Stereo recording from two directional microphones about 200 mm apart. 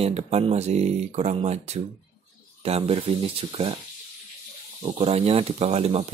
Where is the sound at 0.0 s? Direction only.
30° right (ahead or behind).